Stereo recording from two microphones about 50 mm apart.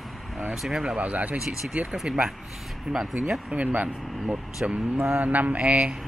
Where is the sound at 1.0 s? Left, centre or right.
Right.